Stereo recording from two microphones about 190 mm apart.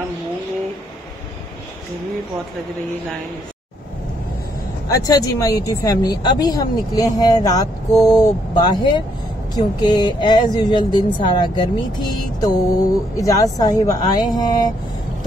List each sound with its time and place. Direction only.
4.8 s speech: 20° left (ahead or behind)